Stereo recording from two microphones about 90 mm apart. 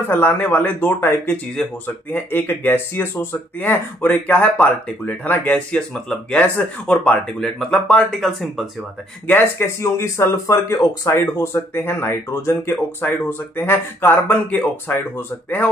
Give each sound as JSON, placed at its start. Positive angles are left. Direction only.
{"t": 0.1, "sound": "speech", "side_deg": 20}
{"t": 9.3, "sound": "speech", "side_deg": 30}